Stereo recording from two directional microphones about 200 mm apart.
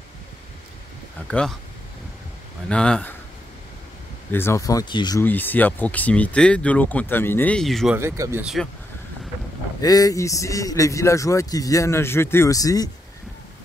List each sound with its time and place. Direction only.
2.7 s speech: 5° left (ahead or behind)
4.3 s a man's voice: 10° left (ahead or behind)
5.2 s a man's voice: 10° left (ahead or behind)
8.0 s speech: 15° right (ahead or behind)
9.8 s a man's voice: 20° left (ahead or behind)